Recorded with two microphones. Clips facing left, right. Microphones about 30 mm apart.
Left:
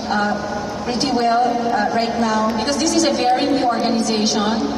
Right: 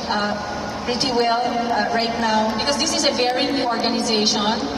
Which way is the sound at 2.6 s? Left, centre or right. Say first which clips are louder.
Left 3 dB; centre.